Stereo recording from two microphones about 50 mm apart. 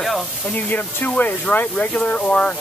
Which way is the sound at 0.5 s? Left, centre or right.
Left.